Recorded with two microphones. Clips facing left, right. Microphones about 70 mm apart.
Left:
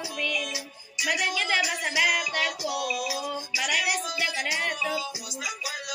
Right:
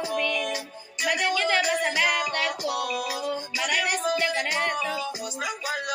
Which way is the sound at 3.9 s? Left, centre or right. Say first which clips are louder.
Right 6 dB; right.